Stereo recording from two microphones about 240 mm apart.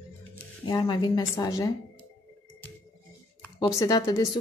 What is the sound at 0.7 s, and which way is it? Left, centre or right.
Speech, centre.